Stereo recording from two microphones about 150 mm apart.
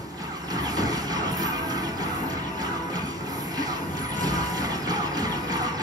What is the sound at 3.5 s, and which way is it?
Music, 25° right (ahead or behind).